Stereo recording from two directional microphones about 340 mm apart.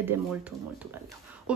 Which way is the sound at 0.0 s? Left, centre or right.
Centre.